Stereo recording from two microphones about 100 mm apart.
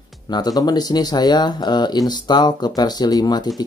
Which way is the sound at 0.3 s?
40° left (ahead or behind).